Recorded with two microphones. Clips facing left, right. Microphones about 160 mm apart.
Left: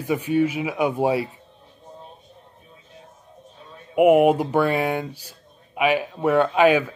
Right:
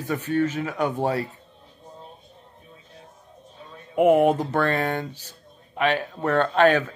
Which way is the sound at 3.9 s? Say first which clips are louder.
Left 2 dB; 10° left (ahead or behind).